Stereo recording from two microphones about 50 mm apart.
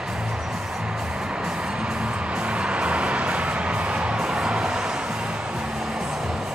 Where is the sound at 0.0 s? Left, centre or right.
Centre.